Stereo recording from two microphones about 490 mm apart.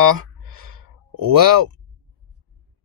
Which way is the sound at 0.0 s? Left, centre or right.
Right.